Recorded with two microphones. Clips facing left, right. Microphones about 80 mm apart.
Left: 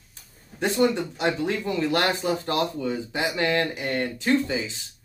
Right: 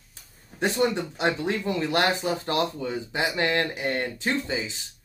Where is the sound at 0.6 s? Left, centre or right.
Right.